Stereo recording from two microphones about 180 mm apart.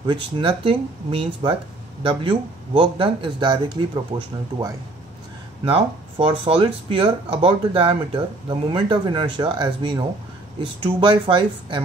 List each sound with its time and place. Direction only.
0.0 s speech: 25° right (ahead or behind)
5.7 s speech: 30° right (ahead or behind)